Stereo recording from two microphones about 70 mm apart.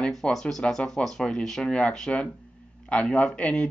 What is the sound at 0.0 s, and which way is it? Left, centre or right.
Speech, centre.